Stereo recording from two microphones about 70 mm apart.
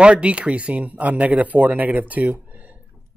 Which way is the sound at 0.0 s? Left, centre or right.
Centre.